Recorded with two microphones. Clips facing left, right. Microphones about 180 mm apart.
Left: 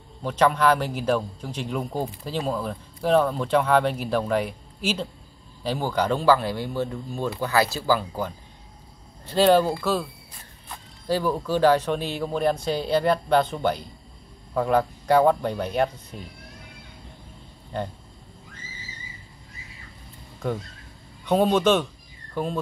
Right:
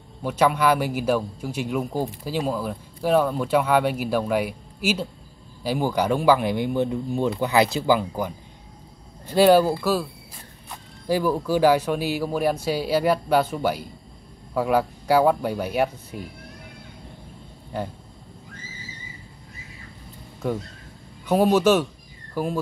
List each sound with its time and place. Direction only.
0.2 s a man's voice: 10° right (ahead or behind)
11.1 s a man's voice: 10° right (ahead or behind)
17.7 s a man's voice: 5° right (ahead or behind)
21.3 s a man's voice: 5° right (ahead or behind)